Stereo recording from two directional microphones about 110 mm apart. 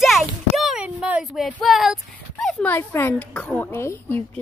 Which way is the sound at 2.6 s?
20° left (ahead or behind).